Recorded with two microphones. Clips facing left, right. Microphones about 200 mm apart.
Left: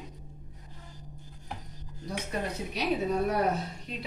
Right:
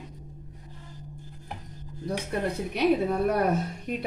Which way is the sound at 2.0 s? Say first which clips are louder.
Right 5 dB; 55° right (ahead or behind).